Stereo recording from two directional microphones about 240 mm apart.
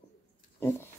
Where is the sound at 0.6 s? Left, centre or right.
Centre.